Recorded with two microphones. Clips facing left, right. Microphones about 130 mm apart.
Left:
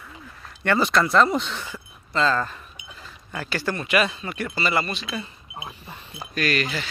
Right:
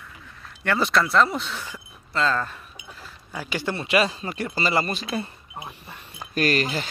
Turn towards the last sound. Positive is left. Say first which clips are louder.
# right 2 dB
turn(degrees=-40)  # may be behind; listen again after turning